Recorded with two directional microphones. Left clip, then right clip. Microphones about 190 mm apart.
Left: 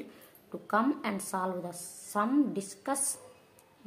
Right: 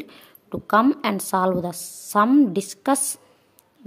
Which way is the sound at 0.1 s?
55° right (ahead or behind).